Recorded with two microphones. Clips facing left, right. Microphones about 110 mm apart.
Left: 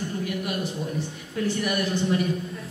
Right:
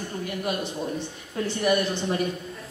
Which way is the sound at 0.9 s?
30° right (ahead or behind).